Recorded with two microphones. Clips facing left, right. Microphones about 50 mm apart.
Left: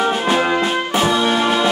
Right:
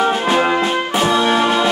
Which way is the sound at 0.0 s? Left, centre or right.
Centre.